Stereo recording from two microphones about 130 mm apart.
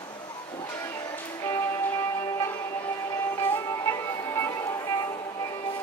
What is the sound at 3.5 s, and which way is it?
Music, 25° left (ahead or behind).